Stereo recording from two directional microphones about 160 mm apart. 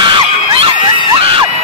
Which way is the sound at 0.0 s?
35° right (ahead or behind).